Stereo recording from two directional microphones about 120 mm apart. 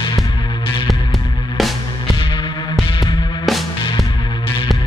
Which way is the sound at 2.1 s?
45° left (ahead or behind).